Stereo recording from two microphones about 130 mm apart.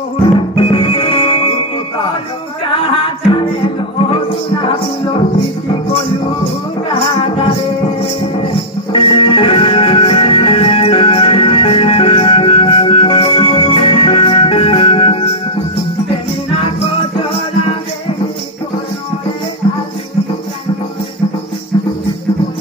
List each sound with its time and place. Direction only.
0.6 s music: 40° left (ahead or behind)
3.3 s music: 40° left (ahead or behind)
6.4 s music: 50° left (ahead or behind)
8.9 s music: 40° left (ahead or behind)